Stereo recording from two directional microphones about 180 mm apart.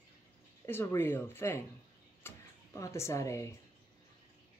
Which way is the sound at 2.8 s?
15° left (ahead or behind).